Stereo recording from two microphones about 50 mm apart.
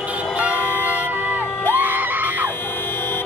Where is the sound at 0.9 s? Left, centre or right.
Right.